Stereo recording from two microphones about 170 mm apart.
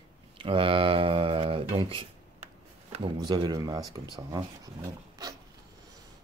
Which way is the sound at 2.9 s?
30° right (ahead or behind).